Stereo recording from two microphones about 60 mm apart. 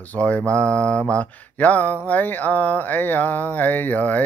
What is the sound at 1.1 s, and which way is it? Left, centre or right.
Speech, left.